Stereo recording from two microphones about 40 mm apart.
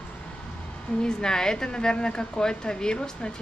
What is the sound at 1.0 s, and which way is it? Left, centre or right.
A woman's voice, centre.